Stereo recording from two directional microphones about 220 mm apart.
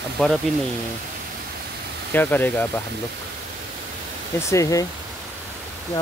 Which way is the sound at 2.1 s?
10° left (ahead or behind).